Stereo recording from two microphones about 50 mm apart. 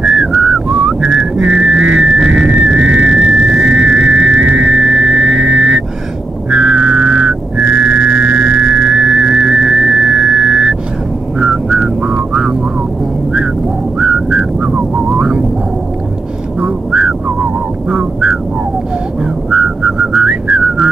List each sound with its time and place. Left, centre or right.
0.0 s whistling: centre
2.6 s a sound: centre
11.3 s vehicle: centre
13.9 s whistling: centre
16.6 s a sound: centre
17.8 s vehicle: centre
19.5 s whistling: centre